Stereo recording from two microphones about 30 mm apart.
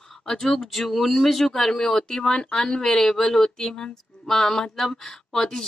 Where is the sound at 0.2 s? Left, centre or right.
Centre.